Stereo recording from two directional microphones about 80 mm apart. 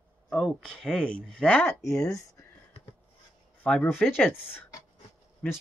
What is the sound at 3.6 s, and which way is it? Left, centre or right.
Speech, centre.